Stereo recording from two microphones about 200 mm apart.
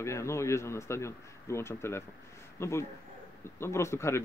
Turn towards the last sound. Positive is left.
turn(degrees=15)  # may be behind; listen again after turning